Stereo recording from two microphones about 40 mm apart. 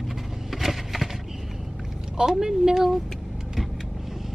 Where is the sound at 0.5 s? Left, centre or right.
Centre.